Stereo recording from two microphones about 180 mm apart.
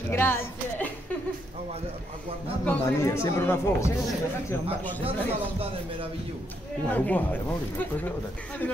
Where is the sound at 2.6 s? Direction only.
15° left (ahead or behind).